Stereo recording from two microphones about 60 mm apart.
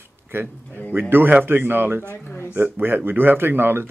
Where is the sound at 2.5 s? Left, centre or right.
Right.